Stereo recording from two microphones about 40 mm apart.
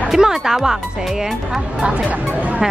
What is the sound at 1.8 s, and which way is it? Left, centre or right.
Speech, right.